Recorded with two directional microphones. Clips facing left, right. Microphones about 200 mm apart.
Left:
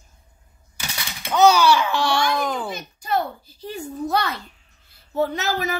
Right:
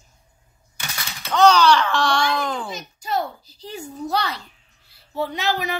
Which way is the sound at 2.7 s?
55° left (ahead or behind).